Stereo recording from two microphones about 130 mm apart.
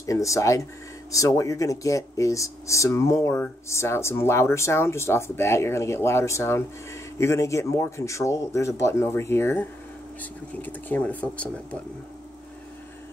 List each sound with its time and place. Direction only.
0.0 s speech: 25° left (ahead or behind)